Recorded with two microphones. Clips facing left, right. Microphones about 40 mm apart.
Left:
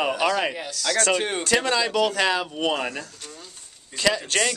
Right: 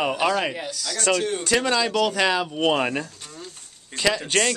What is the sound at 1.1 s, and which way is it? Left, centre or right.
Speech, left.